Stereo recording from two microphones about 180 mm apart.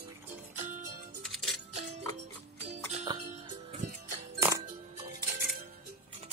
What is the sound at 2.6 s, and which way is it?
Music, 40° right (ahead or behind).